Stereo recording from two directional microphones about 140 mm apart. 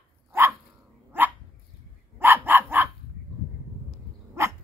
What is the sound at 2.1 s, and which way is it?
Dog, 15° right (ahead or behind).